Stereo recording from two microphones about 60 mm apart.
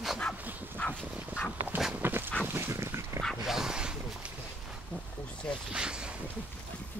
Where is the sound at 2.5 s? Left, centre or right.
Right.